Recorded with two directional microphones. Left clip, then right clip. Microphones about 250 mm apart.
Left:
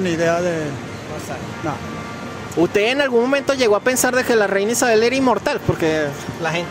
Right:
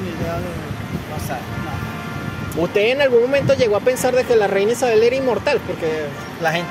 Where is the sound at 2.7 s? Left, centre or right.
Left.